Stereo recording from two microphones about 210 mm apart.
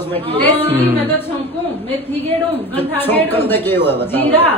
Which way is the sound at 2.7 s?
10° left (ahead or behind).